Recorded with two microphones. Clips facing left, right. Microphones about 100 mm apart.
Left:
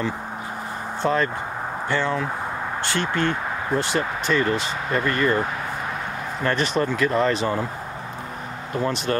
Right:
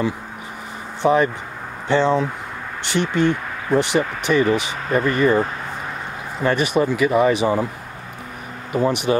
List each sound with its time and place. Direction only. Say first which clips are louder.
1.0 s speech: right 6 dB; 15° right (ahead or behind)
6.4 s speech: right 4 dB; 10° right (ahead or behind)
8.7 s speech: right 5 dB; 15° right (ahead or behind)